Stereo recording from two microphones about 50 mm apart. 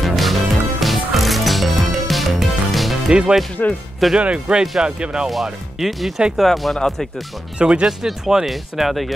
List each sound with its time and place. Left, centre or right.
0.0 s music: centre
3.1 s speech: centre
3.6 s speech: left
4.2 s speech: right
5.3 s speech: centre
7.5 s speech: centre